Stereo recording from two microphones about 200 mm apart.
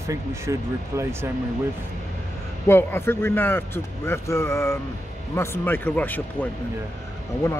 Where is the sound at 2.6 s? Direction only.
10° left (ahead or behind).